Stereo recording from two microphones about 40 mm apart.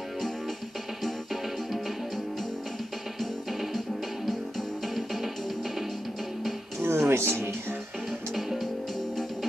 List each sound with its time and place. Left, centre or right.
1.0 s music: centre
4.3 s music: centre
6.8 s music: right
8.4 s music: centre